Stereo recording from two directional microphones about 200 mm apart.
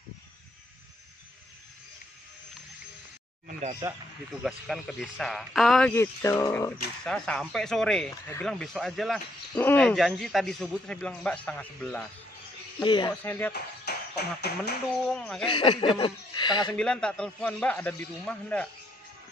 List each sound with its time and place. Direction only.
3.8 s speech: 15° right (ahead or behind)
4.3 s speech: centre (ahead or behind)
7.1 s speech: 5° left (ahead or behind)
12.7 s speech: 20° left (ahead or behind)
13.2 s speech: 10° left (ahead or behind)
13.5 s a sound: 55° left (ahead or behind)
15.0 s speech: 5° left (ahead or behind)
15.4 s speech: 25° left (ahead or behind)
16.7 s speech: 5° left (ahead or behind)